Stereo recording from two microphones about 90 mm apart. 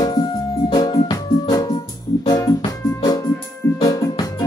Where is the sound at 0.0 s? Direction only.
50° left (ahead or behind).